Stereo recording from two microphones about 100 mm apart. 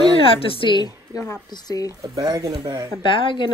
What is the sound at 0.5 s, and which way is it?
Speech, 55° left (ahead or behind).